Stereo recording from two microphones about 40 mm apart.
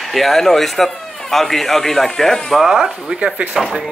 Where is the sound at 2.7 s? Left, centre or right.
Right.